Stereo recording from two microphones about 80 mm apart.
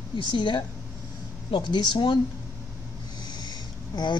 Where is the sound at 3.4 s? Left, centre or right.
Left.